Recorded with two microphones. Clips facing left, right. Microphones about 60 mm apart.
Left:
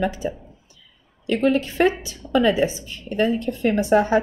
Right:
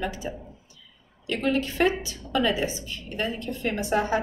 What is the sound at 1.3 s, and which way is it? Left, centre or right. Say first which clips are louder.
A woman's voice: left 6 dB; left.